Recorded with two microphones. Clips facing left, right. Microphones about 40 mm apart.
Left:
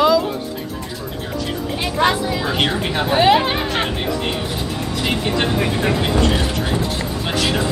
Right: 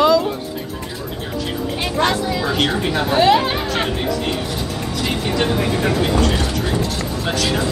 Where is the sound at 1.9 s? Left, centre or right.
Centre.